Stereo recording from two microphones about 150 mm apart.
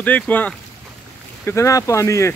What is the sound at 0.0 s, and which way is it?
Speech, 10° left (ahead or behind).